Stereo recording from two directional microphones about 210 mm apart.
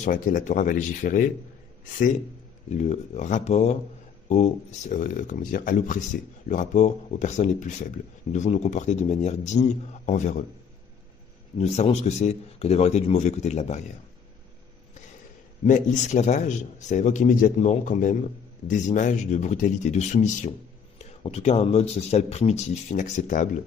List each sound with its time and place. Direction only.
0.0 s speech: 40° left (ahead or behind)
2.8 s speech: 35° left (ahead or behind)
11.5 s speech: 30° left (ahead or behind)
15.6 s speech: 35° left (ahead or behind)